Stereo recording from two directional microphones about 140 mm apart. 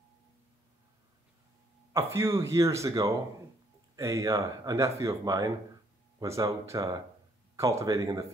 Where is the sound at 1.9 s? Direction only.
20° right (ahead or behind).